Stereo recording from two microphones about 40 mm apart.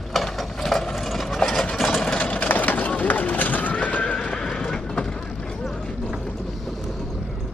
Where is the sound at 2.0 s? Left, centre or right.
Left.